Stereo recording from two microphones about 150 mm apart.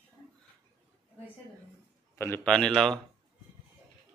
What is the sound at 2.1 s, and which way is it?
Speech, 15° left (ahead or behind).